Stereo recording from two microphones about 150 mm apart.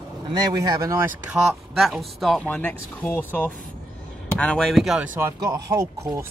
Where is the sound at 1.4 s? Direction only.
Centre (ahead or behind).